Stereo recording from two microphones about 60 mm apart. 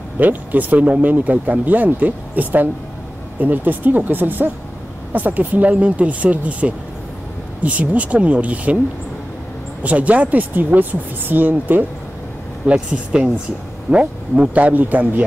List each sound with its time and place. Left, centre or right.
0.2 s speech: right
9.8 s speech: right
12.7 s speech: centre